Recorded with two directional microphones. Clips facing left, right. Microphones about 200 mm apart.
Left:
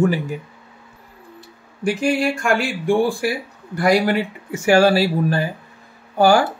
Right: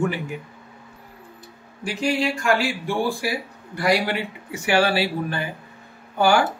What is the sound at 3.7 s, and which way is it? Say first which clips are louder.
Speech: left 5 dB; 50° left (ahead or behind).